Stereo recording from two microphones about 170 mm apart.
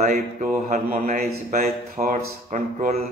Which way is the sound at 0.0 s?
50° right (ahead or behind).